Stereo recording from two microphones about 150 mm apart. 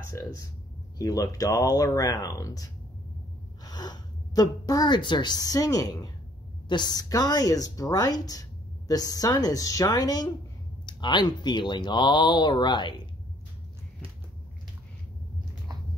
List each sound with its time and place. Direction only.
0.9 s speech: 25° left (ahead or behind)